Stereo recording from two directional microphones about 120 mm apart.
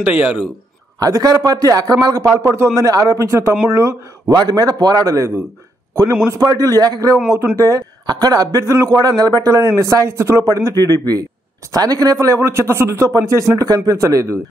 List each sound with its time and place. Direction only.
0.0 s a man's voice: 10° right (ahead or behind)
0.9 s a man's voice: 30° right (ahead or behind)
6.6 s a man's voice: 30° right (ahead or behind)